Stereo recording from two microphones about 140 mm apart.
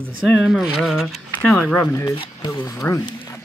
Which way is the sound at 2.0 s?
30° left (ahead or behind).